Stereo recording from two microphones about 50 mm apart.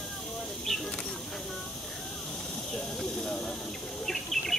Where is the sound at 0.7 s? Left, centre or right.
Centre.